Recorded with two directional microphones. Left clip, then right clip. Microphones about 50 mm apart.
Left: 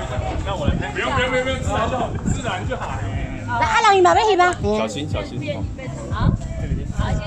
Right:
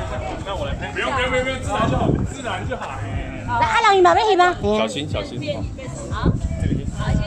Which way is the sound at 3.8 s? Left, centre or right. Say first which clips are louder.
Even; right.